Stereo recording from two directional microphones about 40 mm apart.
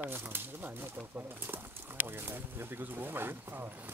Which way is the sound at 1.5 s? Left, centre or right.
Right.